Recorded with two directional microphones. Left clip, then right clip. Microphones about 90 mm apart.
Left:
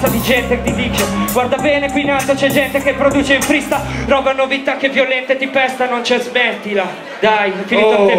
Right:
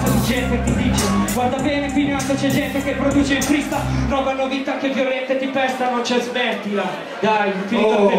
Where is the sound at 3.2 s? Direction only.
35° left (ahead or behind).